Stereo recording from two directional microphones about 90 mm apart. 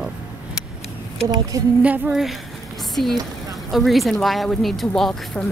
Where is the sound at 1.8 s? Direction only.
20° right (ahead or behind).